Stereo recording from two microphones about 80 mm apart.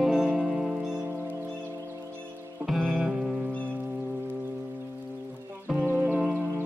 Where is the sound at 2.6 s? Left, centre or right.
Centre.